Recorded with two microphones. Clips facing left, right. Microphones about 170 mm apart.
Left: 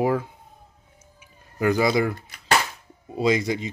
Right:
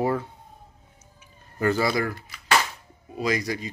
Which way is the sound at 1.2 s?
10° left (ahead or behind).